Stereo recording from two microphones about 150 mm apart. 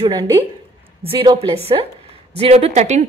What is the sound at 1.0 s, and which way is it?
A woman's voice, 35° right (ahead or behind).